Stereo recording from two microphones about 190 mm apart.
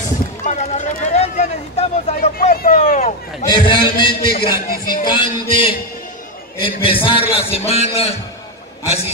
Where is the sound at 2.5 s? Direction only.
50° left (ahead or behind).